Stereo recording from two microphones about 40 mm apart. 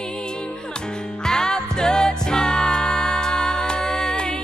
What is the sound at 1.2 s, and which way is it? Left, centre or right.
Music, centre.